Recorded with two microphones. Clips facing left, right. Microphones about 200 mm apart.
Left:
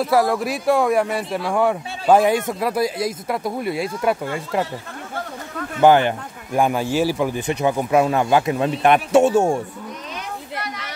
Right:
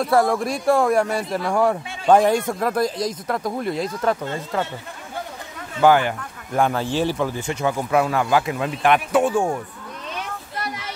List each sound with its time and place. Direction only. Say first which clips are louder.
0.0 s speech: even; centre (ahead or behind)
5.8 s speech: left 2 dB; 20° left (ahead or behind)